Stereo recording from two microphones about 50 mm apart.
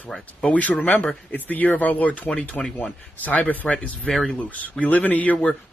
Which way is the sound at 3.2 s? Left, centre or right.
Left.